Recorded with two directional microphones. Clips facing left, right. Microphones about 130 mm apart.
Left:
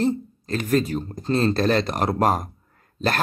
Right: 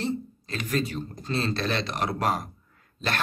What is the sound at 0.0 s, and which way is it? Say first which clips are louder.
A man's voice: left 7 dB; 45° left (ahead or behind).